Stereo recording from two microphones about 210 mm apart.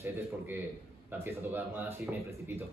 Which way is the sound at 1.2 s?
10° right (ahead or behind).